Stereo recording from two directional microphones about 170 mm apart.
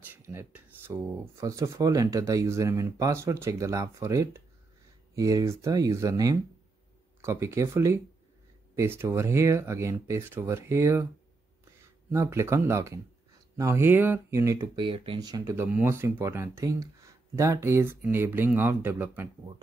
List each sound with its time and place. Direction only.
0.1 s speech: 10° right (ahead or behind)
12.1 s speech: 15° right (ahead or behind)
15.5 s speech: 10° right (ahead or behind)